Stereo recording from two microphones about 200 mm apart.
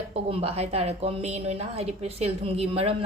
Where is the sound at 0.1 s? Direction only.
30° right (ahead or behind).